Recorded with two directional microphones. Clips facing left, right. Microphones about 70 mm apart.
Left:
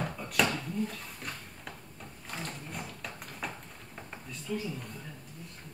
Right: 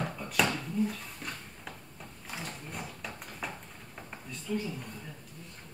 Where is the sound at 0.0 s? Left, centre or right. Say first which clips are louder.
Even; centre.